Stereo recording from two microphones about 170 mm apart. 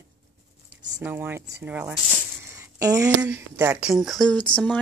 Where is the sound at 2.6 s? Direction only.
20° right (ahead or behind).